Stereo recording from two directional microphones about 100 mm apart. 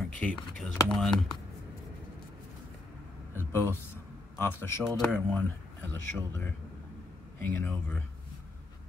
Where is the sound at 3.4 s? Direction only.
25° left (ahead or behind).